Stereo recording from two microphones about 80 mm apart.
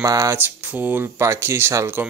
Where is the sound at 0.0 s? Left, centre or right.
Right.